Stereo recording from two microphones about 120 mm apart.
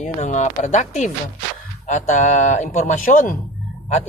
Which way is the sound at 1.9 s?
90° left.